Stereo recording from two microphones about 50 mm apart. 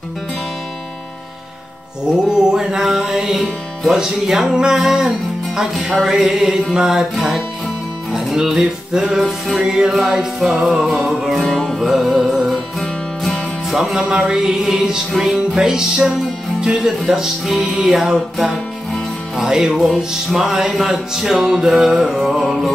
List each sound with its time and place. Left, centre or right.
2.1 s music: centre
11.4 s music: centre
12.0 s music: centre
12.8 s music: centre
14.1 s music: right
14.7 s music: centre